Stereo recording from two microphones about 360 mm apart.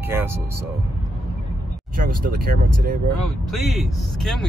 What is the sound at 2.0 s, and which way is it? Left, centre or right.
Speech, right.